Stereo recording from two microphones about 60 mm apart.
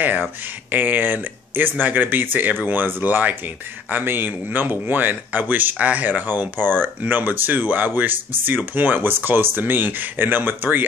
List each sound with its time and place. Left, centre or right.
0.7 s speech: right